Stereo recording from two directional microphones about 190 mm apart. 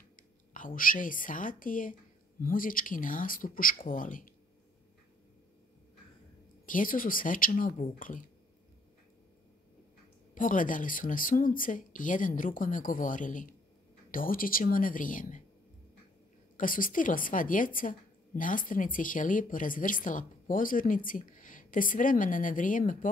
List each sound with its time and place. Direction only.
0.1 s a woman's voice: 45° left (ahead or behind)
6.6 s a woman's voice: 45° left (ahead or behind)
10.3 s a woman's voice: 45° left (ahead or behind)
16.5 s a woman's voice: 45° left (ahead or behind)